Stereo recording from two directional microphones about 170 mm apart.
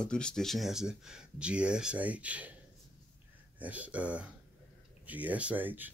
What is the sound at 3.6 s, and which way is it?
Speech, 10° right (ahead or behind).